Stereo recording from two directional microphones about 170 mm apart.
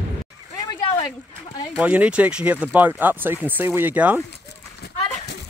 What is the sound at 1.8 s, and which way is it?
Speech, 10° right (ahead or behind).